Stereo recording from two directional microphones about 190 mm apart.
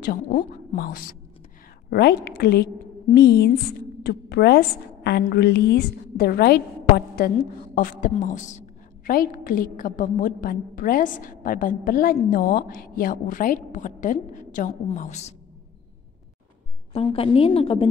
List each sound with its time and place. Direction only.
0.1 s a woman's voice: 45° left (ahead or behind)
7.7 s a woman's voice: 45° left (ahead or behind)
16.9 s a woman's voice: 30° left (ahead or behind)